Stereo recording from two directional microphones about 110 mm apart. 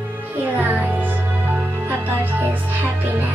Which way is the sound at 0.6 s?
15° right (ahead or behind).